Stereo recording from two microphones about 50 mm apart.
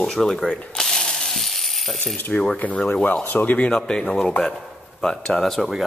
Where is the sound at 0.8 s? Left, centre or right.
Centre.